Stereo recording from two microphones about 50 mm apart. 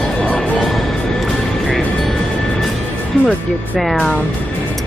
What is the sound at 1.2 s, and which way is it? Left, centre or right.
Vehicle, centre.